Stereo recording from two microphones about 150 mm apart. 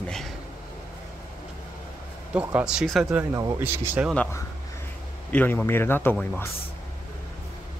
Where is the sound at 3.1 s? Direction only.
15° right (ahead or behind).